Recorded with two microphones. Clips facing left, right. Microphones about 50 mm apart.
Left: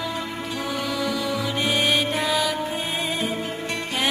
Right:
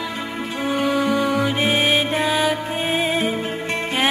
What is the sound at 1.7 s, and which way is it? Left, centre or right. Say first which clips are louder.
Music: right 3 dB; right.